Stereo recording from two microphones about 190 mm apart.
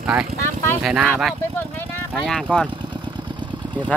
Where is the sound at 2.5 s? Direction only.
5° left (ahead or behind).